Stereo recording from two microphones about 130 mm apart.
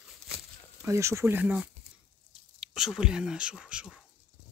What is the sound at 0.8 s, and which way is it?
Speech, 20° right (ahead or behind).